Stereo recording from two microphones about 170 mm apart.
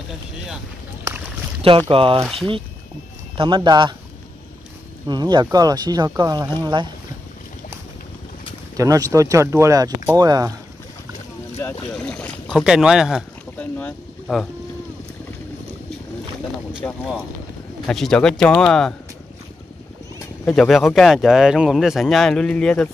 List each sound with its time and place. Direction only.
1.9 s speech: 30° right (ahead or behind)
3.3 s speech: 25° right (ahead or behind)
5.0 s speech: 25° right (ahead or behind)
8.7 s speech: 20° right (ahead or behind)
11.9 s speech: 5° left (ahead or behind)
13.6 s boat: 10° left (ahead or behind)
16.8 s speech: 5° left (ahead or behind)
20.4 s speech: centre (ahead or behind)